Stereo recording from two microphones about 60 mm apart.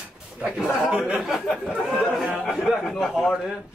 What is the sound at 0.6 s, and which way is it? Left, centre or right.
A man's voice, centre.